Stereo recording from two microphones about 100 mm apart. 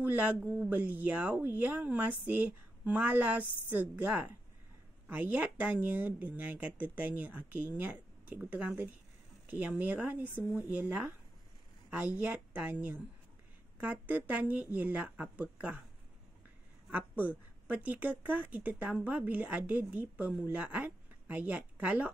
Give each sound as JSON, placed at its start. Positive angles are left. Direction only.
{"t": 0.0, "sound": "speech", "side_deg": -15}
{"t": 16.9, "sound": "speech", "side_deg": -15}